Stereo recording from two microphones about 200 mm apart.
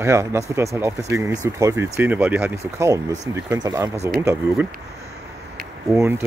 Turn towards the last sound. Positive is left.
turn(degrees=-10)  # may be behind; listen again after turning